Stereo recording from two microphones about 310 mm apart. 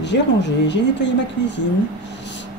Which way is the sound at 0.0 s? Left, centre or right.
Left.